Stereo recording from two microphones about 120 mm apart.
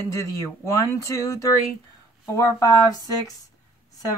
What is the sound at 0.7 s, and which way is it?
Speech, 25° left (ahead or behind).